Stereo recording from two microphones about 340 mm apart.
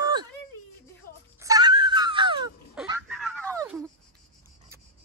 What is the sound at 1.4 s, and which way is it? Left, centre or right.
Wail, centre.